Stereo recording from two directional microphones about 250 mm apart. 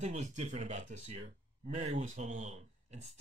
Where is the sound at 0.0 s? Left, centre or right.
Right.